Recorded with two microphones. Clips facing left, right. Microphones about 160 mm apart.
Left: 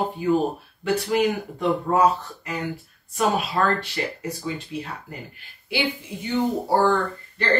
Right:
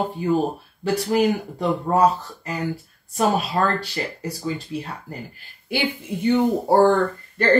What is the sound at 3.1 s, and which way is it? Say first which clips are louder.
Speech: right 2 dB; 35° right (ahead or behind).